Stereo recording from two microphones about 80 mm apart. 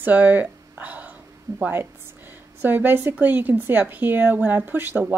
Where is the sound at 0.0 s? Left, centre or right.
Right.